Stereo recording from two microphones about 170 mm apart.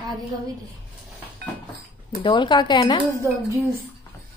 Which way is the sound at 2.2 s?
30° left (ahead or behind).